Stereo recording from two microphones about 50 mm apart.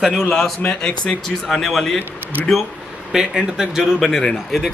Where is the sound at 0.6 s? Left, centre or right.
Centre.